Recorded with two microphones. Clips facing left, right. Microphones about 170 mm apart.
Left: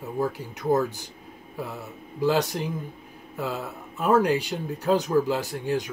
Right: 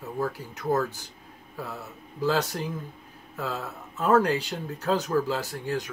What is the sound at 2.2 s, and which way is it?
Speech, 15° left (ahead or behind).